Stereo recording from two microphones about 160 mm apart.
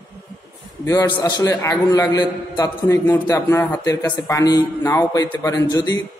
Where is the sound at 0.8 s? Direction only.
20° left (ahead or behind).